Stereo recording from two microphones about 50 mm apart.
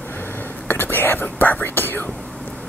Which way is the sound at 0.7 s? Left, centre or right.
Left.